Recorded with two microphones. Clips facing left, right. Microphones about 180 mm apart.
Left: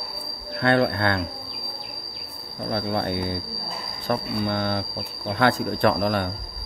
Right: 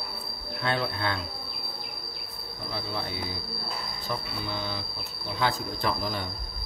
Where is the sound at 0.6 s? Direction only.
60° left (ahead or behind).